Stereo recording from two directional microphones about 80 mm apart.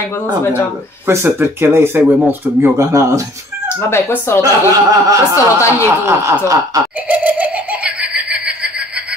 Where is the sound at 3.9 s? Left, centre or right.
Left.